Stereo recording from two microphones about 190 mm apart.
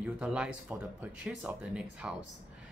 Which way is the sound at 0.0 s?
5° right (ahead or behind).